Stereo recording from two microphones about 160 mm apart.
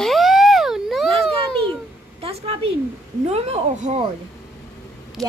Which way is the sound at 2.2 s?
35° right (ahead or behind).